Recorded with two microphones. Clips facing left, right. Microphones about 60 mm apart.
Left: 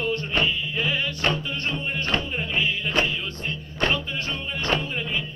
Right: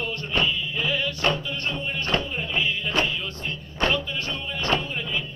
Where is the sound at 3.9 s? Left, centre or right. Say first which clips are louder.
Even; left.